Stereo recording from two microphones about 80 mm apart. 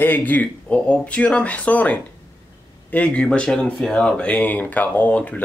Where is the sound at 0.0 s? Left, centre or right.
Left.